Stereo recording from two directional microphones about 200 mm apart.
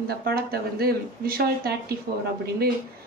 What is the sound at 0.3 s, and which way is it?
Speech, 50° right (ahead or behind).